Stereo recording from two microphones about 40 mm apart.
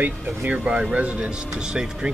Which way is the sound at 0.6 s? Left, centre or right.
Centre.